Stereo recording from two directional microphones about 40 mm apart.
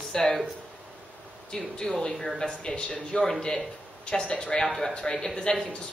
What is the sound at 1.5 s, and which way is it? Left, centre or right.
A woman's voice, centre.